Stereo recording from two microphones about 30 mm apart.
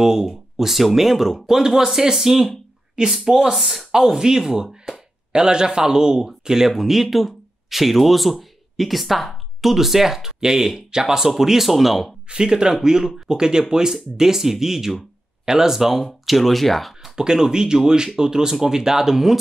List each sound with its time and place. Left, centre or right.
0.0 s speech: centre
0.3 s speech: centre
3.9 s speech: centre
5.3 s speech: right
6.8 s speech: centre
12.3 s speech: right; by 15.0 s centre
15.0 s speech: right; by 16.9 s centre
17.1 s speech: right